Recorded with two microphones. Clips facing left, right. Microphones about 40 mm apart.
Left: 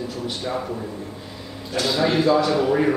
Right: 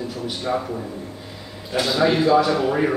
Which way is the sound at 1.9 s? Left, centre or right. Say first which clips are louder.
Right 2 dB; centre.